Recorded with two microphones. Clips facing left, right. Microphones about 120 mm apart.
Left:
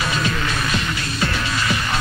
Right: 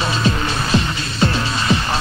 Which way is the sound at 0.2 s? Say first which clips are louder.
Right 3 dB; 30° right (ahead or behind).